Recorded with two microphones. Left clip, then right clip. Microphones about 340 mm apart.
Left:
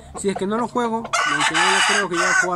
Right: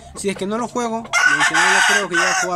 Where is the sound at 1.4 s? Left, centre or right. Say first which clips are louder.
Right 3 dB; centre.